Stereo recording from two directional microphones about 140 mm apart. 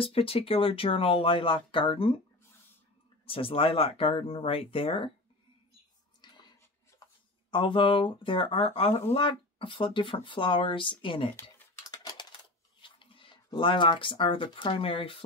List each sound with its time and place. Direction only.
0.0 s speech: 40° left (ahead or behind)
3.3 s speech: 40° left (ahead or behind)
6.2 s a sound: 30° left (ahead or behind)
7.5 s speech: 35° left (ahead or behind)
11.9 s a sound: 30° left (ahead or behind)
12.8 s speech: 35° left (ahead or behind)